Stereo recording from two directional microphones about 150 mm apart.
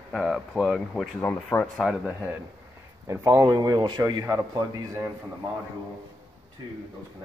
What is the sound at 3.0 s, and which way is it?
A man's voice, 20° right (ahead or behind).